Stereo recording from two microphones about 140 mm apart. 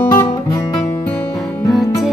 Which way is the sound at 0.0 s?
20° left (ahead or behind).